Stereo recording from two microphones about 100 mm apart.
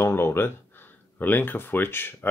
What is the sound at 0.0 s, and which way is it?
Speech, 25° left (ahead or behind).